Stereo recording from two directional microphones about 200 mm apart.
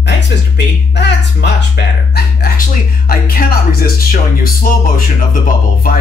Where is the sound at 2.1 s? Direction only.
50° left (ahead or behind).